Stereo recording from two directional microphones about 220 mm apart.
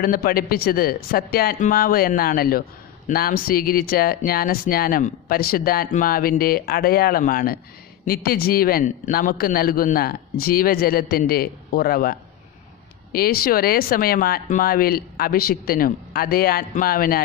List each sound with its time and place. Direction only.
0.0 s speech: 40° left (ahead or behind)